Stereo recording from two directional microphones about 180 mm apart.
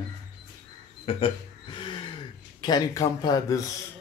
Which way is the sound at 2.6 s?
25° left (ahead or behind).